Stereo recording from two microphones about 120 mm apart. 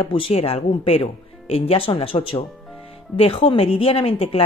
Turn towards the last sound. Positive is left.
turn(degrees=55)  # may be behind; listen again after turning